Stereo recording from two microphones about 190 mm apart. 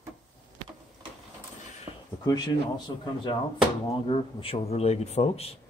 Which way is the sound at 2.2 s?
20° left (ahead or behind).